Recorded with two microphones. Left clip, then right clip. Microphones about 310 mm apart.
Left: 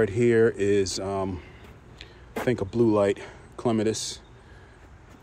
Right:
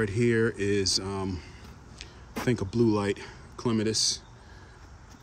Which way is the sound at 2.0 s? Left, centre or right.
Centre.